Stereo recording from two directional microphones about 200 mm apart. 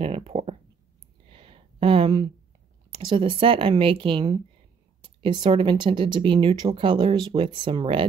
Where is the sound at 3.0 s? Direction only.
25° right (ahead or behind).